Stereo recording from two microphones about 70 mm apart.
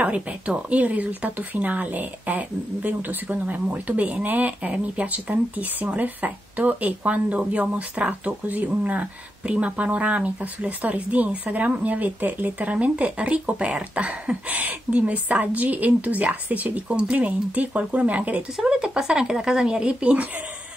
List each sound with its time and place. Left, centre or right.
0.0 s speech: centre
18.6 s speech: centre